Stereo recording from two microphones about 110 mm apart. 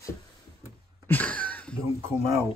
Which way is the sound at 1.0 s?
15° left (ahead or behind).